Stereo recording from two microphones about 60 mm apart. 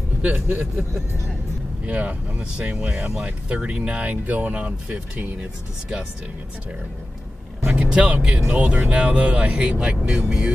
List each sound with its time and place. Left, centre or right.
0.2 s speech: right
1.9 s speech: right
7.7 s speech: centre